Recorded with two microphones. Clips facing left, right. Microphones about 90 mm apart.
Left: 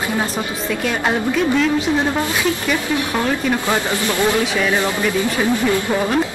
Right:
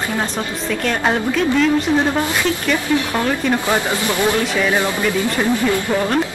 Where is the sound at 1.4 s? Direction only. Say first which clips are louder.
Right 2 dB; 5° left (ahead or behind).